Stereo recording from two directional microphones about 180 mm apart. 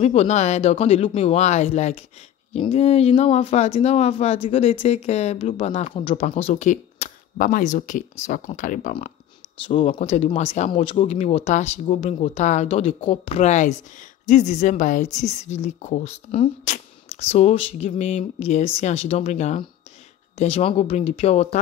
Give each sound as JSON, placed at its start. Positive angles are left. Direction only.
{"t": 0.0, "sound": "speech", "side_deg": 35}